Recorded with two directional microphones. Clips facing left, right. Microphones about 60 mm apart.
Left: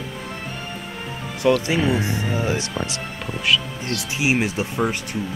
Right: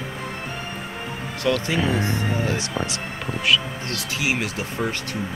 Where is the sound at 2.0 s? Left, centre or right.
Centre.